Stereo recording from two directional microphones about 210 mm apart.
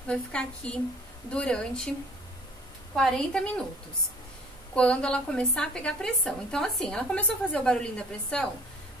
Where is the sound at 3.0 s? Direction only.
Centre (ahead or behind).